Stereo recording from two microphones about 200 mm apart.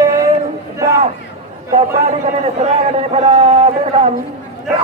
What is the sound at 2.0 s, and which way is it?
A man's voice, 35° right (ahead or behind).